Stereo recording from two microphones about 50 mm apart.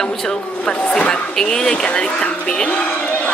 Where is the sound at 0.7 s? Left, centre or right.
Centre.